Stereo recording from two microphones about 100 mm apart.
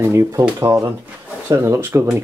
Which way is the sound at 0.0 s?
30° right (ahead or behind).